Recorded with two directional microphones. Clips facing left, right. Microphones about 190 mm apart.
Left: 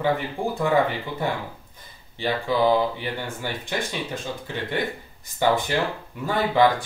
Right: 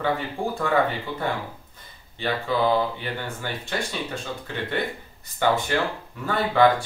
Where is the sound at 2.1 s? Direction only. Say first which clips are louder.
Left 1 dB; 15° left (ahead or behind).